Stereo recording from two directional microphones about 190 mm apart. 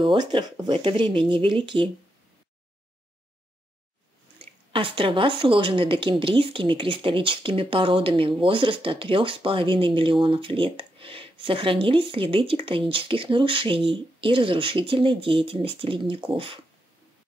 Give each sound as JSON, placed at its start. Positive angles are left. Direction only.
{"t": 0.0, "sound": "speech", "side_deg": -25}
{"t": 4.7, "sound": "speech", "side_deg": -25}